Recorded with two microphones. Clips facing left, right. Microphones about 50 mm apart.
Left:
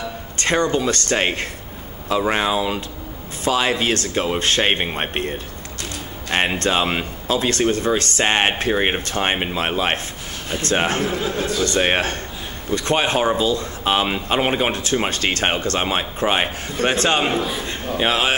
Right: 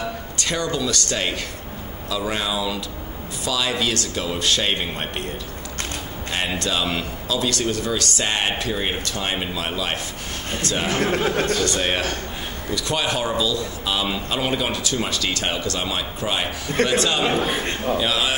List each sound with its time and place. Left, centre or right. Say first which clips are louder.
0.4 s speech: left 6 dB; left
6.6 s speech: left 4 dB; left
11.0 s speech: right 2 dB; right
11.6 s speech: left 3 dB; left
17.4 s a man's voice: right 1 dB; right
17.9 s speech: left 5 dB; left